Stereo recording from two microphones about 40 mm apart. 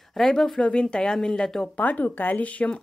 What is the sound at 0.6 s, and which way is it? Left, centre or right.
Speech, left.